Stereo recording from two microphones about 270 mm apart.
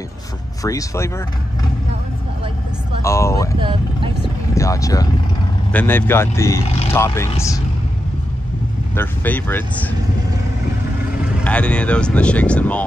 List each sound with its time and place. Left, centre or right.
0.6 s speech: centre
3.0 s speech: centre
3.5 s speech: centre
4.2 s vehicle: centre
5.7 s speech: centre
8.9 s speech: centre
11.3 s speech: centre